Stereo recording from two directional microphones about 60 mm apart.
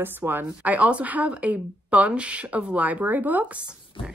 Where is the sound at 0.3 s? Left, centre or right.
Right.